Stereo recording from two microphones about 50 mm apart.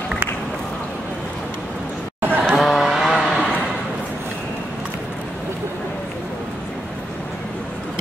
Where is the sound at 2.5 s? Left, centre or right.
Centre.